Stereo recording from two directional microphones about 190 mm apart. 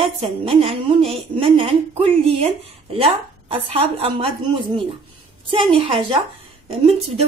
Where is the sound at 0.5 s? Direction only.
30° right (ahead or behind).